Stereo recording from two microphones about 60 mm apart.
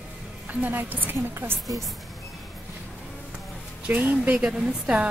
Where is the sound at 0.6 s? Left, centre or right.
Right.